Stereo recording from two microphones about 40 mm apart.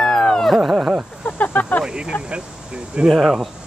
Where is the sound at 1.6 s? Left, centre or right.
Left.